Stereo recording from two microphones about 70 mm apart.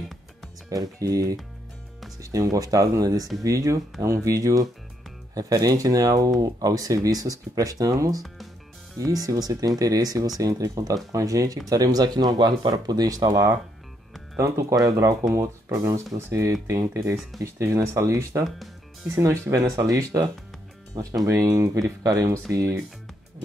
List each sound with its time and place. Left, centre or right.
0.7 s speech: right
2.3 s speech: right
14.3 s speech: right
19.5 s speech: right